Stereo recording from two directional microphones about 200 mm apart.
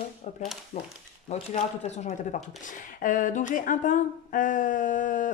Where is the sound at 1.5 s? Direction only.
40° left (ahead or behind).